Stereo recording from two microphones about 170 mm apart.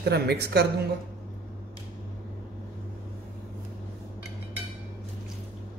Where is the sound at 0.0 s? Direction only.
70° right (ahead or behind).